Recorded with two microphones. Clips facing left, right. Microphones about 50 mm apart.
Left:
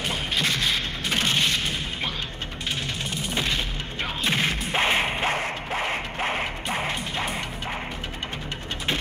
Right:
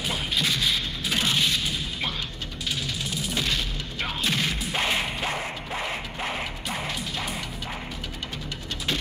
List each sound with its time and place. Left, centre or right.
1.1 s boom: centre
1.4 s smash: left
3.3 s music: left
4.3 s a sound: left
4.6 s whip: left
5.7 s music: left